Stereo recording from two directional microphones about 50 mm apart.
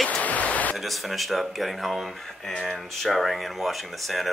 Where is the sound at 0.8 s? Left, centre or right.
Centre.